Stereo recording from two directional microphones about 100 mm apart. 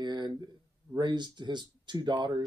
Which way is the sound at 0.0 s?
45° right (ahead or behind).